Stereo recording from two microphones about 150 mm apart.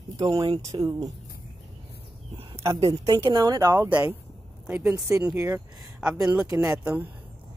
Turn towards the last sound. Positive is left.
turn(degrees=-10)  # may be behind; listen again after turning